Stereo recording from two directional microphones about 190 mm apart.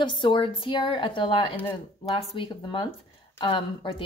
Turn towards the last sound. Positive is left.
turn(degrees=25)  # may be behind; listen again after turning